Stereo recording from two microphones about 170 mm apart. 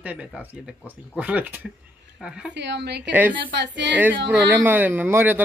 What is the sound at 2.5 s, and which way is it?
Speech, 90° right.